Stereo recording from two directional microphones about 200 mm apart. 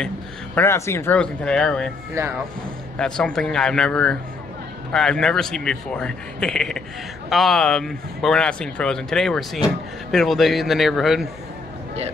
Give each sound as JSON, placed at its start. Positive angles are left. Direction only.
{"t": 0.6, "sound": "speech", "side_deg": 15}
{"t": 2.1, "sound": "speech", "side_deg": -10}
{"t": 3.0, "sound": "speech", "side_deg": 5}